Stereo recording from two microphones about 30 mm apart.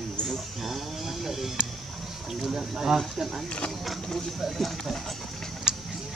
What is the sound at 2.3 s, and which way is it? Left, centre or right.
Speech, centre.